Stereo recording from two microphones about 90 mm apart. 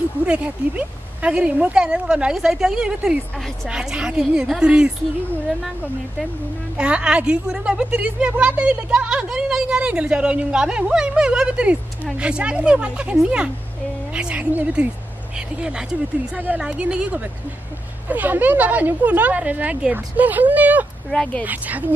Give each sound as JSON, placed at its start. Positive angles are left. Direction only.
{"t": 0.3, "sound": "a woman's voice", "side_deg": -15}
{"t": 6.8, "sound": "a woman's voice", "side_deg": -10}
{"t": 21.1, "sound": "speech", "side_deg": 5}
{"t": 21.5, "sound": "a woman's voice", "side_deg": -15}